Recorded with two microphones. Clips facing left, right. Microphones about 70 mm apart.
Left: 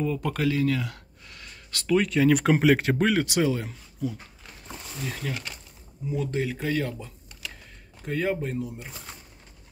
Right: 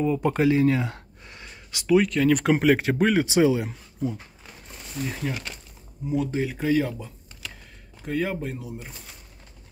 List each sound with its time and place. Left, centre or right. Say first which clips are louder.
0.0 s speech: right 5 dB; centre
2.0 s speech: right 1 dB; centre
3.3 s speech: right 5 dB; centre
5.0 s speech: right 3 dB; centre